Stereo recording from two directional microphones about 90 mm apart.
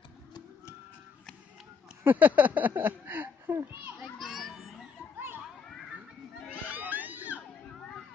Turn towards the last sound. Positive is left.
turn(degrees=-20)  # may be behind; listen again after turning